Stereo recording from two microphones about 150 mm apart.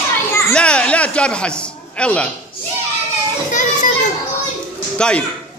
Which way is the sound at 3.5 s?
55° left (ahead or behind).